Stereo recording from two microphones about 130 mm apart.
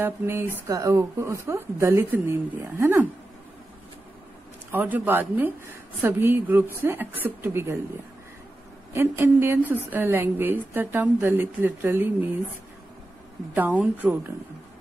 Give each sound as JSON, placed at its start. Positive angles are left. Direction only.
{"t": 0.0, "sound": "a woman's voice", "side_deg": -15}
{"t": 4.6, "sound": "a woman's voice", "side_deg": -15}
{"t": 8.9, "sound": "a woman's voice", "side_deg": -20}
{"t": 13.6, "sound": "a woman's voice", "side_deg": -15}